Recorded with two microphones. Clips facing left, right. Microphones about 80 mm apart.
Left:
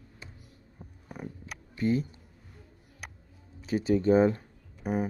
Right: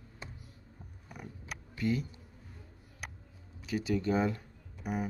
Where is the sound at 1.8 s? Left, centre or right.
Left.